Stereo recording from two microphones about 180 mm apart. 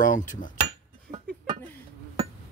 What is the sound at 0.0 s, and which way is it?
Speech, 45° left (ahead or behind).